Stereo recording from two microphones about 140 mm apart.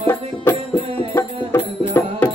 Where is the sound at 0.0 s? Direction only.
15° left (ahead or behind).